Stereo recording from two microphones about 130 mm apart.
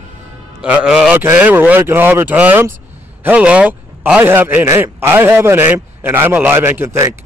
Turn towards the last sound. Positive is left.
turn(degrees=-15)  # may be behind; listen again after turning